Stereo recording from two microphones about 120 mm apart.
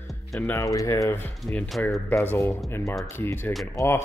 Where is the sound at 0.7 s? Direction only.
25° left (ahead or behind).